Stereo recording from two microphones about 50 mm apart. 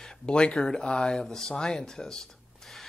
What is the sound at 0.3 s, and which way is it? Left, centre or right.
Speech, centre.